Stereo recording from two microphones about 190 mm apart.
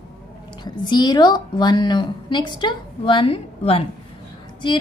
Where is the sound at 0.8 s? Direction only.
25° left (ahead or behind).